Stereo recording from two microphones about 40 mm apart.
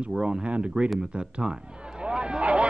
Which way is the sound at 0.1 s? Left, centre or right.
Centre.